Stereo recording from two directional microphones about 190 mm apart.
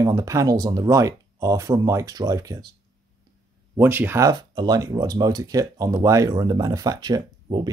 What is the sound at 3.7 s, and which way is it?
Speech, 10° right (ahead or behind).